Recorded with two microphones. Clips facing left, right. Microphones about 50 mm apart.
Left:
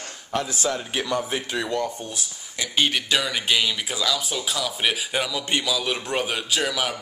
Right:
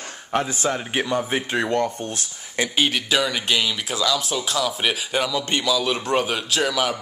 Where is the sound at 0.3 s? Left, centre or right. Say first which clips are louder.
Right 3 dB; right.